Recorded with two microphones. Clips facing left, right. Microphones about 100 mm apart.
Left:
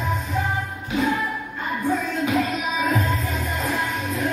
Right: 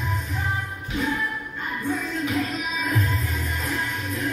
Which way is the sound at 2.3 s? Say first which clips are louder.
Left 5 dB; 75° left (ahead or behind).